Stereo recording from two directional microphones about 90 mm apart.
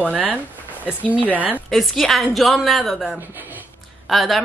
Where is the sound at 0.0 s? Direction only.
15° right (ahead or behind).